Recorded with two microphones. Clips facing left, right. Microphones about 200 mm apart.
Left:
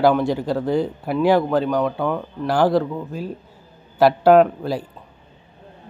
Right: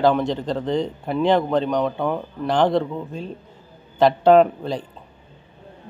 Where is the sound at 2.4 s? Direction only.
5° left (ahead or behind).